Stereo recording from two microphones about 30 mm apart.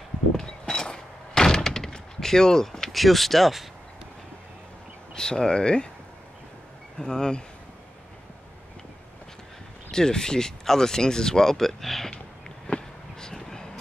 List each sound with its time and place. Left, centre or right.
0.4 s thunk: centre
2.9 s speech: centre
5.1 s speech: left
7.0 s speech: left
9.8 s speech: left
11.5 s speech: centre
12.6 s a sound: left
13.3 s vehicle: centre